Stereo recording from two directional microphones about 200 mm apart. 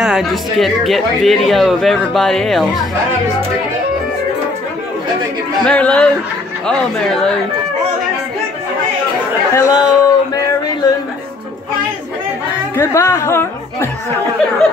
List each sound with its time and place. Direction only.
0.0 s speech: centre (ahead or behind)
5.7 s speech: 5° left (ahead or behind)
9.5 s speech: 15° left (ahead or behind)
10.0 s a sound: 20° left (ahead or behind)
12.7 s speech: 15° left (ahead or behind)